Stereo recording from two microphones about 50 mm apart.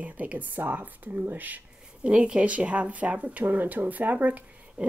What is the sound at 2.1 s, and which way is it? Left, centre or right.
Speech, centre.